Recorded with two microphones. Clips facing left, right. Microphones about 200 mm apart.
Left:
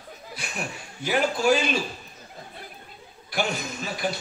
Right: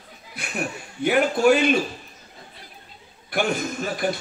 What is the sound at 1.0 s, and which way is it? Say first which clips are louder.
Speech: right 5 dB; 55° right (ahead or behind).